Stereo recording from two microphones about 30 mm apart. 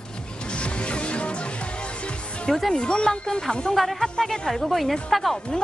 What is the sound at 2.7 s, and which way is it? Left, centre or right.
Speech, left.